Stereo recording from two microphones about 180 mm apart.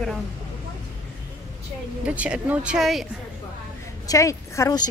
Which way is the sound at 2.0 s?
5° right (ahead or behind).